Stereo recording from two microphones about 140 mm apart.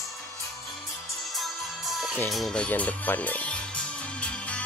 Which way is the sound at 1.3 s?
Centre (ahead or behind).